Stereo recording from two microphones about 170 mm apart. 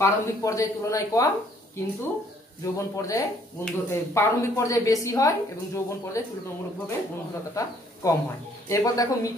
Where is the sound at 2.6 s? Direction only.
20° left (ahead or behind).